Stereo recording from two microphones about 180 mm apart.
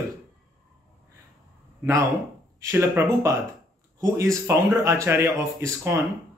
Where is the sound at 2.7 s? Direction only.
15° right (ahead or behind).